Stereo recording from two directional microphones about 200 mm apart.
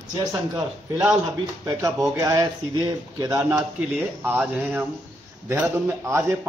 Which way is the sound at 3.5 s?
5° right (ahead or behind).